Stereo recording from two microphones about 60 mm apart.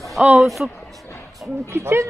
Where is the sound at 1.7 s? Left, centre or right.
Right.